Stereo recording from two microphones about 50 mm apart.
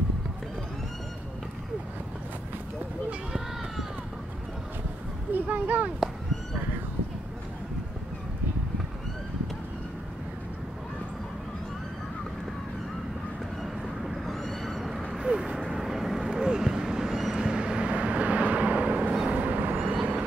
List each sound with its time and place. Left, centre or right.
5.3 s a sound: right
14.2 s vehicle: centre
15.0 s vehicle: centre
16.3 s vehicle: centre